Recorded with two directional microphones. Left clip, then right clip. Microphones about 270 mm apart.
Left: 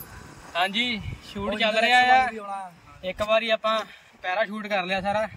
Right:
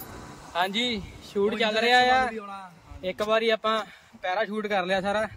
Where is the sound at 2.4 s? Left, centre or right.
Left.